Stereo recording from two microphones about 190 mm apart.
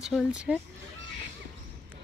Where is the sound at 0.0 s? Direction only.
5° right (ahead or behind).